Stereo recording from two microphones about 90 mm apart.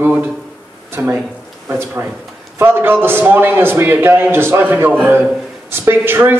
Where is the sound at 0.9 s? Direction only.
25° right (ahead or behind).